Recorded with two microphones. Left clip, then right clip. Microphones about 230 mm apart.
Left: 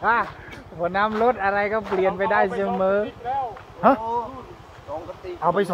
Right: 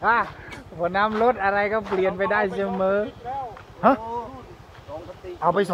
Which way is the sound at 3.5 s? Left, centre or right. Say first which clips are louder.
Even; centre.